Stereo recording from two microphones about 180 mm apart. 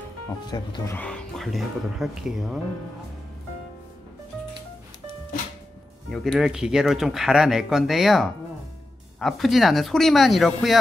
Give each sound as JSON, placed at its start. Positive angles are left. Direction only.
{"t": 0.5, "sound": "speech", "side_deg": 25}
{"t": 0.9, "sound": "speech", "side_deg": 5}
{"t": 6.0, "sound": "speech", "side_deg": 0}